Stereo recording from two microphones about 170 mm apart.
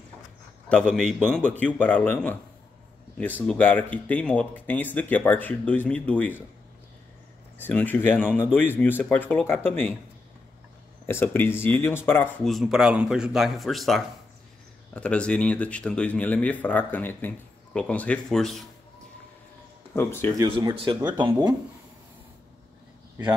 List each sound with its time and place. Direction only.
0.7 s speech: 5° left (ahead or behind)
3.4 s speech: 10° left (ahead or behind)
7.5 s speech: 10° left (ahead or behind)
11.1 s speech: 15° left (ahead or behind)
12.4 s speech: centre (ahead or behind)
19.9 s speech: 15° left (ahead or behind)
20.4 s speech: 30° right (ahead or behind)